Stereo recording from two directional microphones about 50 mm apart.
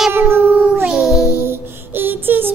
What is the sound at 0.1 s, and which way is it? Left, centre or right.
Cat, right.